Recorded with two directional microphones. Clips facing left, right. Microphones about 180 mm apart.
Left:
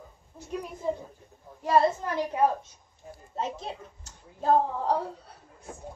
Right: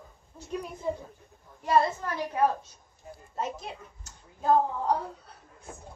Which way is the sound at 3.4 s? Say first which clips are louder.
Left 1 dB; 30° left (ahead or behind).